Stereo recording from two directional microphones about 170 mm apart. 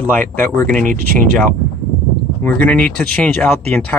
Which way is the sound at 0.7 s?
50° right (ahead or behind).